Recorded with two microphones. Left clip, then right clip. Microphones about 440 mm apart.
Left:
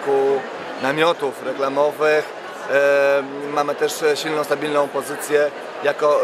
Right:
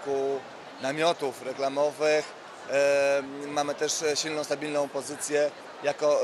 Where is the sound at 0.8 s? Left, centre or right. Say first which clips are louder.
Left 8 dB; right.